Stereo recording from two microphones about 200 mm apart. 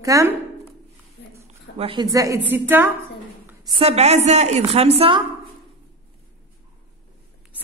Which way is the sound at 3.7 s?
30° right (ahead or behind).